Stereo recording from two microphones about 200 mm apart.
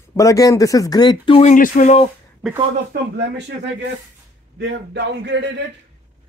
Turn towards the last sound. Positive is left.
turn(degrees=-60)  # may be behind; listen again after turning